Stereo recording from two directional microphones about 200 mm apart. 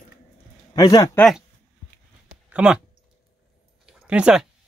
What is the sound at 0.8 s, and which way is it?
Speech, 20° left (ahead or behind).